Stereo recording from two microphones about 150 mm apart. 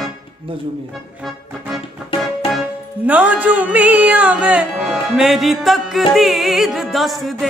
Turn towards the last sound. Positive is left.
turn(degrees=0)  # may be behind; listen again after turning